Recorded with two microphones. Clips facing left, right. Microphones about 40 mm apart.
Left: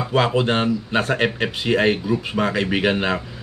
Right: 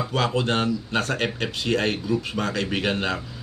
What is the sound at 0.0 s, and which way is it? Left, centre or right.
Speech, centre.